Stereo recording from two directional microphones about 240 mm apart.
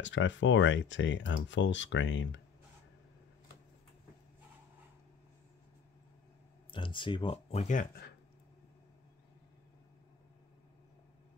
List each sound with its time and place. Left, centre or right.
0.0 s speech: left
6.7 s speech: left